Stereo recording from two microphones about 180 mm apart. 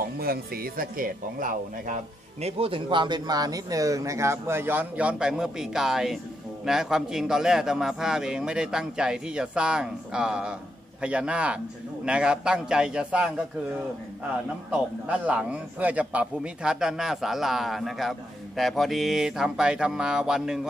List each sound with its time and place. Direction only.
0.0 s speech: 55° right (ahead or behind)
2.4 s a man's voice: 30° right (ahead or behind); by 13.3 s 5° right (ahead or behind)
14.7 s a man's voice: 10° right (ahead or behind)